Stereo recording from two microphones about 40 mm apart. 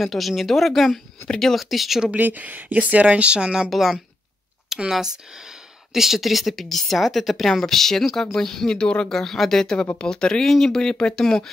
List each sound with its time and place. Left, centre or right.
0.0 s a woman's voice: centre
1.2 s speech: centre
1.5 s a woman's voice: centre
2.1 s speech: right
3.7 s a woman's voice: centre
4.6 s a sound: centre
5.9 s a woman's voice: centre
8.7 s speech: left
9.1 s speech: centre
10.4 s speech: centre